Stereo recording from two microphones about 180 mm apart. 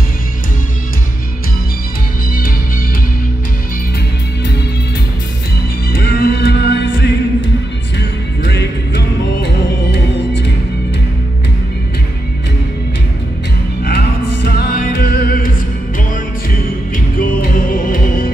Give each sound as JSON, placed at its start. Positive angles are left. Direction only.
{"t": 5.9, "sound": "music", "side_deg": 55}
{"t": 8.5, "sound": "music", "side_deg": 70}
{"t": 13.8, "sound": "music", "side_deg": 60}
{"t": 16.9, "sound": "music", "side_deg": 50}